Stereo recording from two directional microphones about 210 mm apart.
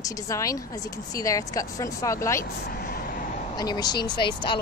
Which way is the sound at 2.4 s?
45° left (ahead or behind).